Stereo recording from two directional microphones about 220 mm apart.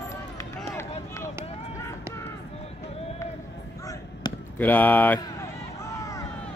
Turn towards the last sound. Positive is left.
turn(degrees=10)  # may be behind; listen again after turning